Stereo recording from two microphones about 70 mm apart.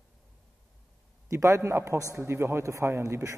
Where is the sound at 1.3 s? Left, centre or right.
Right.